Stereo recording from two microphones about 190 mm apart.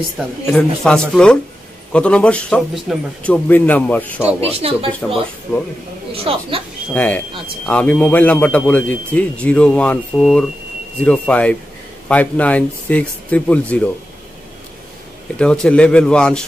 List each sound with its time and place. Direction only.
0.5 s a man's voice: 5° left (ahead or behind)
4.4 s speech: 30° right (ahead or behind)
6.1 s speech: 30° right (ahead or behind)
6.9 s a man's voice: 5° left (ahead or behind)
15.3 s a man's voice: 5° left (ahead or behind)